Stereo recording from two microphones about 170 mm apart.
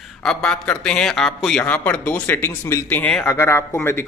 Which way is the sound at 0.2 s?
5° left (ahead or behind).